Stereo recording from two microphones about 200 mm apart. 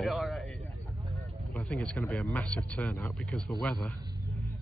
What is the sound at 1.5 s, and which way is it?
Speech, 5° left (ahead or behind).